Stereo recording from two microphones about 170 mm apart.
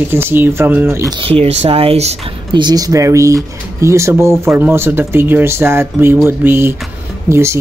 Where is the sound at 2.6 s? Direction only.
25° right (ahead or behind).